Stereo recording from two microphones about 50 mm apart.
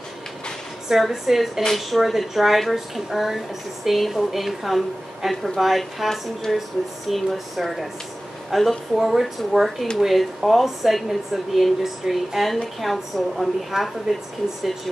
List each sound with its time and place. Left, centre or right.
0.8 s a woman's voice: centre
1.6 s a woman's voice: centre